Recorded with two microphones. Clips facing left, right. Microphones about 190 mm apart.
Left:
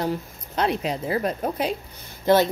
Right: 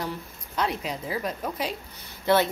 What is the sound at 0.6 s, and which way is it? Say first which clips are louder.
Speech: left 5 dB; 60° left (ahead or behind).